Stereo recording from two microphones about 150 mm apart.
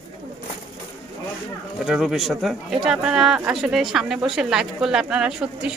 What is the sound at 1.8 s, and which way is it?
Speech, 5° right (ahead or behind).